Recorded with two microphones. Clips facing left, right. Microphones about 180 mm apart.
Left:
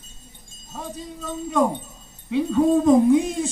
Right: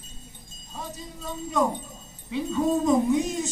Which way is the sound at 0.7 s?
50° left (ahead or behind).